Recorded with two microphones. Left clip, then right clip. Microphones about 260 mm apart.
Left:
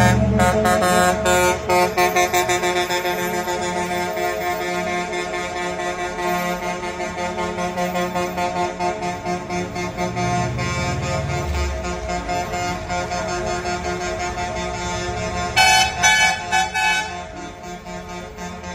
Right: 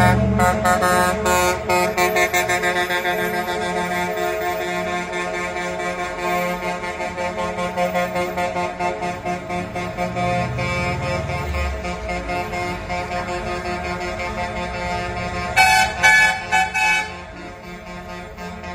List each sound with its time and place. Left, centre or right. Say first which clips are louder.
0.0 s music: right 1 dB; centre; by 4.0 s left
6.2 s a sound: right 1 dB; left
7.3 s music: right 1 dB; left
10.6 s vehicle: right 1 dB; left
15.5 s music: even; left